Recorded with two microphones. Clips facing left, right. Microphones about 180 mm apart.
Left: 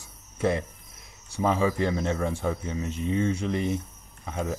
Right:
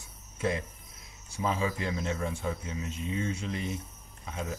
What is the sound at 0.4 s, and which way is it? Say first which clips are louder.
Cricket: left 5 dB; 55° left (ahead or behind).